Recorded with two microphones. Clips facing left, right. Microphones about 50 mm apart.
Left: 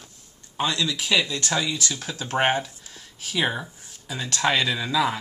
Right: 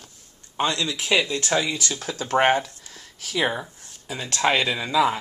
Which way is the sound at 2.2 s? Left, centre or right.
Centre.